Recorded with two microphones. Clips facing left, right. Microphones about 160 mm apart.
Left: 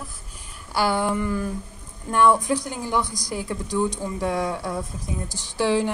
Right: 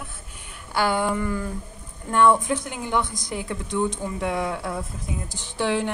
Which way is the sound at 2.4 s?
35° left (ahead or behind).